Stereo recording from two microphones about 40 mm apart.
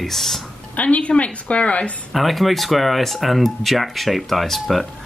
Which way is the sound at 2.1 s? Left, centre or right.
Centre.